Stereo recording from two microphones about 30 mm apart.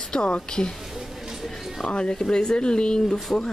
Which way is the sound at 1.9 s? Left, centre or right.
Left.